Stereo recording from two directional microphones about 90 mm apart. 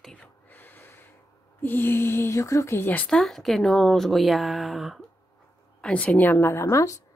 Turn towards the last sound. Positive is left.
turn(degrees=35)  # may be behind; listen again after turning